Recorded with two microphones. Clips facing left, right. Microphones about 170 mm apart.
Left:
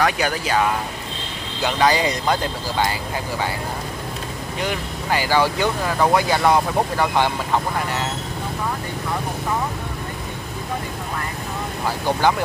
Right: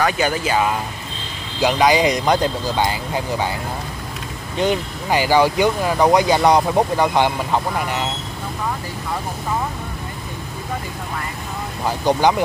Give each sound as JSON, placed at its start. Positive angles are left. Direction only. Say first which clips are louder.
{"t": 0.0, "sound": "speech", "louder": "right 2 dB", "side_deg": -5}
{"t": 1.6, "sound": "speech", "louder": "right 3 dB", "side_deg": -15}
{"t": 4.6, "sound": "speech", "louder": "right 7 dB", "side_deg": -20}
{"t": 12.2, "sound": "speech", "louder": "right 2 dB", "side_deg": -15}